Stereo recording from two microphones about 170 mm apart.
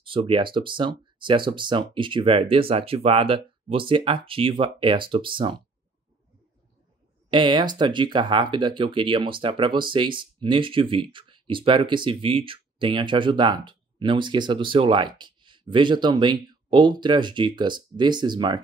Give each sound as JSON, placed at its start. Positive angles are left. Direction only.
{"t": 0.0, "sound": "speech", "side_deg": -30}
{"t": 7.2, "sound": "speech", "side_deg": -25}